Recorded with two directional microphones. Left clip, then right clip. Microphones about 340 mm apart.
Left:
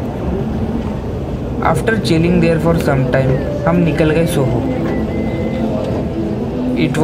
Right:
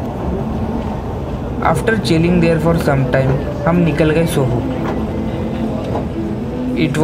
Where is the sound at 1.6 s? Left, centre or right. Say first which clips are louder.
Even; centre.